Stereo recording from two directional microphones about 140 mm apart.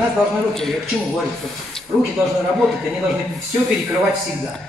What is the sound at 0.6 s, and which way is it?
Speech, centre (ahead or behind).